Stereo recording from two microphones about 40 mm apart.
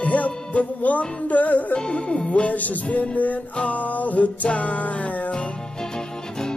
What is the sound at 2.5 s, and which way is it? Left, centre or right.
Music, left.